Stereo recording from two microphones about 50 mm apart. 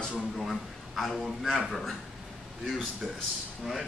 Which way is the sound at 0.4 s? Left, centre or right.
Centre.